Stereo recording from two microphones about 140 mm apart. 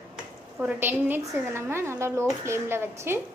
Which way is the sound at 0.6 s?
10° right (ahead or behind).